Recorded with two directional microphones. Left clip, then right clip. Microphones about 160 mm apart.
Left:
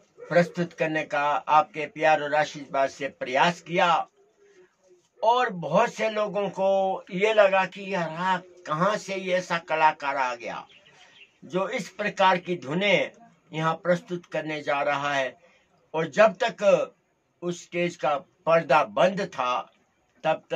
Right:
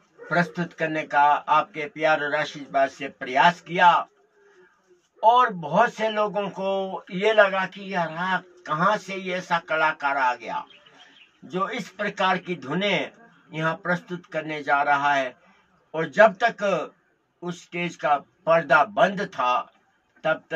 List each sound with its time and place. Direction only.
0.3 s speech: 25° left (ahead or behind)
5.2 s speech: 25° left (ahead or behind)